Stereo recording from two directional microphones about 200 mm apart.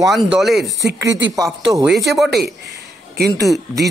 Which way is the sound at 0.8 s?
65° right (ahead or behind).